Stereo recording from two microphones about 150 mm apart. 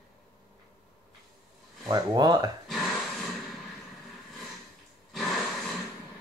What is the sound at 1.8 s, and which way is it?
Speech, 25° right (ahead or behind).